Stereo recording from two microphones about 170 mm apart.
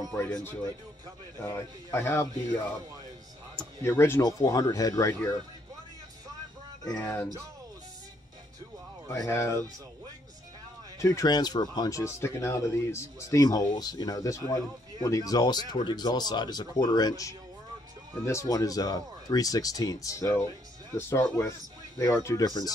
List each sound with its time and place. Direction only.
0.1 s speech: 10° left (ahead or behind)
3.5 s speech: 15° left (ahead or behind)
6.9 s speech: 15° left (ahead or behind)
9.1 s speech: 15° left (ahead or behind)
11.0 s speech: 20° left (ahead or behind)